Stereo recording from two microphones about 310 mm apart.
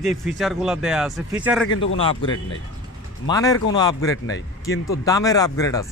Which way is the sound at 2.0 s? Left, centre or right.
Centre.